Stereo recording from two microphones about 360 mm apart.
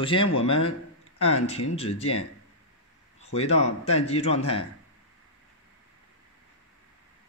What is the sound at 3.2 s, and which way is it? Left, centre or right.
A man's voice, centre.